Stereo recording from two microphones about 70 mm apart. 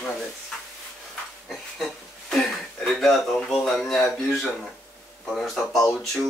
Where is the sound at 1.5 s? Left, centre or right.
Centre.